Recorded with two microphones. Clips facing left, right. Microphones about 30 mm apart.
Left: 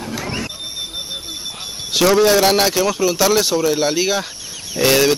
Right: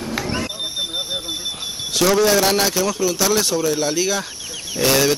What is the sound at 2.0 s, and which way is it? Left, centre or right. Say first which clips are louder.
Speech: left 3 dB; centre.